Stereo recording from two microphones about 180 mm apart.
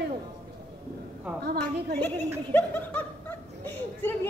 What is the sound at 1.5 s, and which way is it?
Speech, 65° right (ahead or behind).